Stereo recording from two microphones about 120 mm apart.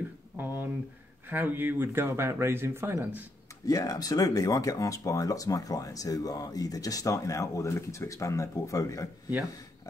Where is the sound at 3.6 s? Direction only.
30° left (ahead or behind).